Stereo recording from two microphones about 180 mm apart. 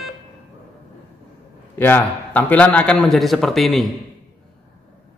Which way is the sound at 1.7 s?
10° left (ahead or behind).